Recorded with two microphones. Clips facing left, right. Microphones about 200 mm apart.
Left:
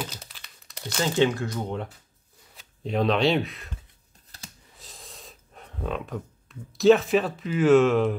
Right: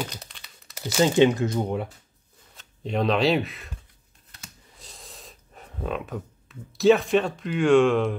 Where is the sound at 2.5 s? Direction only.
Centre (ahead or behind).